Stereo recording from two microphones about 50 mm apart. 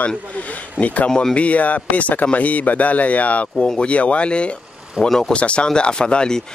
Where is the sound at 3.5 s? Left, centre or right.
Centre.